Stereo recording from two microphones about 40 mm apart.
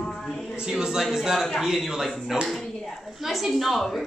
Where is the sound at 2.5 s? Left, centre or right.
Centre.